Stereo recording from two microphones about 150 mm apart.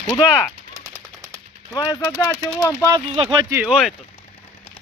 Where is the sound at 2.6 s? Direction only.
20° left (ahead or behind).